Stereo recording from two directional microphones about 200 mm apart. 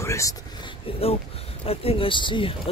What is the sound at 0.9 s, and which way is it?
Speech, 25° left (ahead or behind).